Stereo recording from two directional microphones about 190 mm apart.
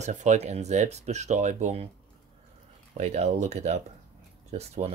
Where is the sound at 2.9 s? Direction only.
35° right (ahead or behind).